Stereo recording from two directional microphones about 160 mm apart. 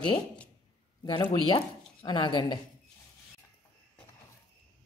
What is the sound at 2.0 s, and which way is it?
Speech, 25° left (ahead or behind).